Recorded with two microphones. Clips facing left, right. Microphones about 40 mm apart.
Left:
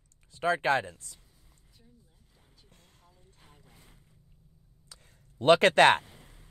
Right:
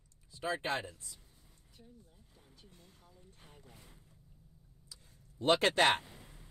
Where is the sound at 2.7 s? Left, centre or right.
Left.